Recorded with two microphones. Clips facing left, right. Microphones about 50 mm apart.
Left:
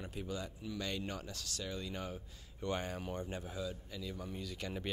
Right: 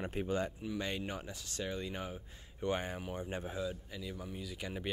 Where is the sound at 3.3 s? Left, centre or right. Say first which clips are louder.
Right 3 dB; right.